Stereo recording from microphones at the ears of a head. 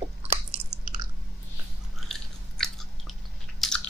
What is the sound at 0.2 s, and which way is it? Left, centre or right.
Chewing, right.